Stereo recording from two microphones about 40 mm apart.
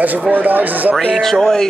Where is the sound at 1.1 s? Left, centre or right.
Centre.